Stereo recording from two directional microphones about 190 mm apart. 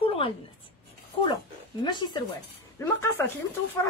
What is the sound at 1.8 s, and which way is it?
Speech, 25° left (ahead or behind).